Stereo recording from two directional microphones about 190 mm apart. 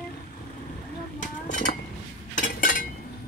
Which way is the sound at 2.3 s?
40° left (ahead or behind).